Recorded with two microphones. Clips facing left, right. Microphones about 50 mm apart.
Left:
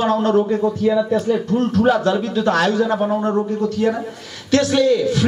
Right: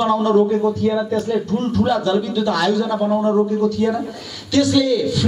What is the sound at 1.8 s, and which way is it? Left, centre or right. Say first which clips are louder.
Speech: left 1 dB; left.